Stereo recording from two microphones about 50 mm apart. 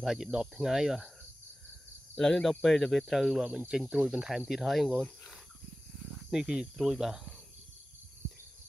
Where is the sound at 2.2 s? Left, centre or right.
Centre.